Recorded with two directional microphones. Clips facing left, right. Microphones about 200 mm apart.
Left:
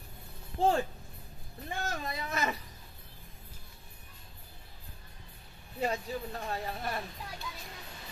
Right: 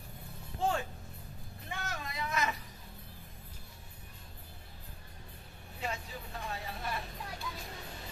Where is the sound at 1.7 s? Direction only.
35° left (ahead or behind).